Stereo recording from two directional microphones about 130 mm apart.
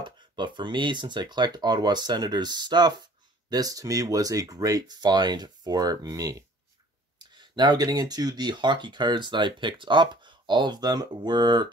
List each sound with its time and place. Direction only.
0.0 s speech: 35° right (ahead or behind)